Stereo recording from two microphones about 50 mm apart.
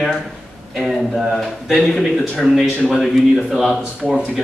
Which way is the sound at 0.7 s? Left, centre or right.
Centre.